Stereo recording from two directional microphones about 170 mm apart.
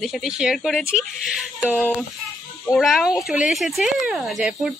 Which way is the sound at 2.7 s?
Centre (ahead or behind).